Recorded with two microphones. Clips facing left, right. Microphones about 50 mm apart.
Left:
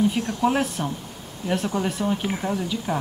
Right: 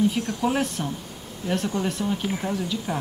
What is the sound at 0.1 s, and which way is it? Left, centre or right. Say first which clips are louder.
Speech: left 2 dB; centre.